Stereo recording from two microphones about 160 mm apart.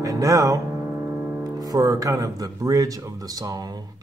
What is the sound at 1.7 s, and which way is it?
Music, 20° right (ahead or behind).